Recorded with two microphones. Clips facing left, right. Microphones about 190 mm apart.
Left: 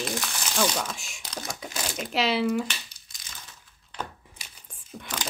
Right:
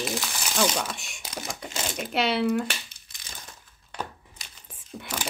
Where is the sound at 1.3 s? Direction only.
5° right (ahead or behind).